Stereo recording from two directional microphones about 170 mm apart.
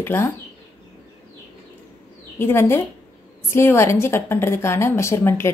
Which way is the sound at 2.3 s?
15° left (ahead or behind).